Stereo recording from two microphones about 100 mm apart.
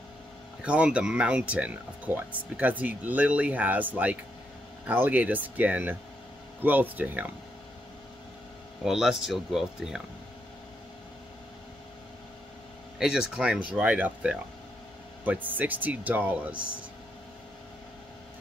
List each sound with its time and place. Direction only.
0.7 s speech: 10° right (ahead or behind)
8.8 s speech: 5° right (ahead or behind)
13.4 s speech: 10° right (ahead or behind)